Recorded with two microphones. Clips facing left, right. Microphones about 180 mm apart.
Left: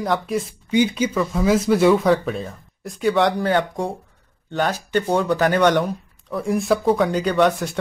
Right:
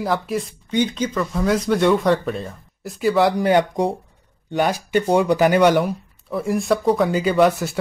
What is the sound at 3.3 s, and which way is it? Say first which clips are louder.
Speech: right 3 dB; 15° right (ahead or behind).